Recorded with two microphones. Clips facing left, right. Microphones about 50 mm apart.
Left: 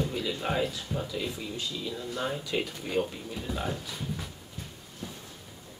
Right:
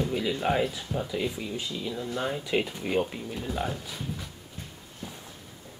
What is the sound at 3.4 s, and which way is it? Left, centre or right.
Speech, centre.